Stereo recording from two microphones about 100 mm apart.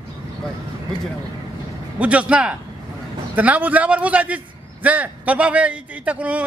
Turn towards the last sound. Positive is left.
turn(degrees=-15)  # may be behind; listen again after turning